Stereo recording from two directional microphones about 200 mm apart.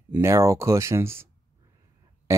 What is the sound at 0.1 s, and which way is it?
Speech, 15° right (ahead or behind).